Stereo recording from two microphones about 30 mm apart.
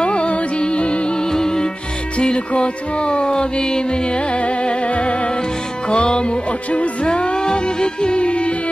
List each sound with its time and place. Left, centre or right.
0.0 s music: left
1.2 s music: left
2.1 s music: left